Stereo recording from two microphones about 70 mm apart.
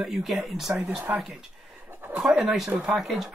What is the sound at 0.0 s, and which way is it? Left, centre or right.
Speech, centre.